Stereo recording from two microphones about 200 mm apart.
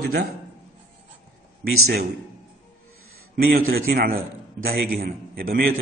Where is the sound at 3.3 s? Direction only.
50° right (ahead or behind).